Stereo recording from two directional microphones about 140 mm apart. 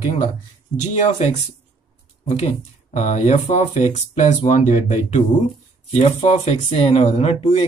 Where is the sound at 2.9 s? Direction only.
60° left (ahead or behind).